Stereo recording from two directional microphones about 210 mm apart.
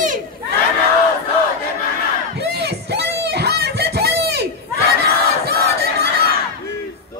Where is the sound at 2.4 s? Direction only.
50° right (ahead or behind).